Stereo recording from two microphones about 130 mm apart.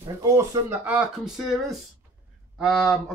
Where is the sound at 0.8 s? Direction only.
5° right (ahead or behind).